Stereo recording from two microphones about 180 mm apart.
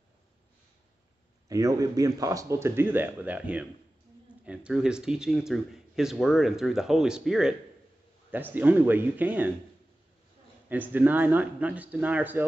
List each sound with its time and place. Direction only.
1.5 s speech: 20° right (ahead or behind); by 7.5 s 5° right (ahead or behind)
8.5 s speech: 10° right (ahead or behind)
10.7 s speech: 10° right (ahead or behind)